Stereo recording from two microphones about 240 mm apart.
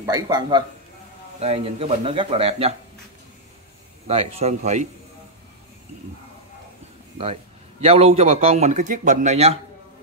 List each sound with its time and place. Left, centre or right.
0.0 s a man's voice: centre
4.1 s a man's voice: right
7.8 s a man's voice: right